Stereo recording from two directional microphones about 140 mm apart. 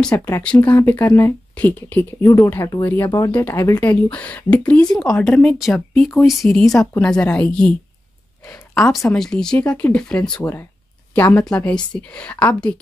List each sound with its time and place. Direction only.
0.1 s speech: 20° left (ahead or behind)
2.2 s speech: 25° left (ahead or behind)
4.1 s speech: 10° left (ahead or behind)
10.4 s speech: 15° left (ahead or behind)